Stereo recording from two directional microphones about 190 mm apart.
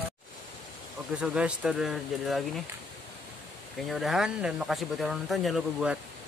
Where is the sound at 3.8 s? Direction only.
Centre (ahead or behind).